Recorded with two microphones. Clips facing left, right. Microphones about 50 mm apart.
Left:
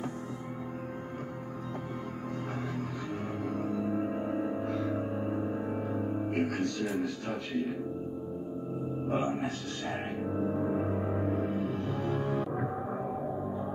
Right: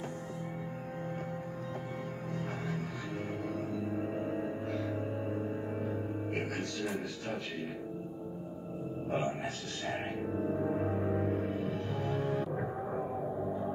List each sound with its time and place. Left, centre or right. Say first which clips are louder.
5.3 s music: left 3 dB; centre
6.3 s speech: left 6 dB; centre
9.1 s speech: left 3 dB; centre
10.8 s music: left 1 dB; centre
12.5 s music: left 2 dB; centre